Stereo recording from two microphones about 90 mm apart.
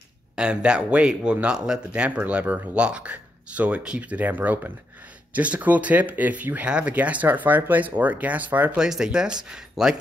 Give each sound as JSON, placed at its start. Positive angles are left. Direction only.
{"t": 0.4, "sound": "speech", "side_deg": -10}
{"t": 8.7, "sound": "speech", "side_deg": -5}